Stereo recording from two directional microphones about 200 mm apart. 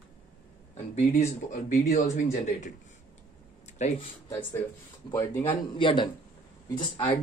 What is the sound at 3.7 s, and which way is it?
Speech, 30° left (ahead or behind).